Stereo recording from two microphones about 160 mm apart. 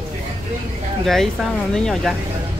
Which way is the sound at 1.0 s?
Centre (ahead or behind).